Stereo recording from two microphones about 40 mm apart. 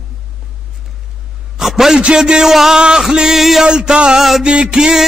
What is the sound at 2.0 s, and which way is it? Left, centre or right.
Music, right.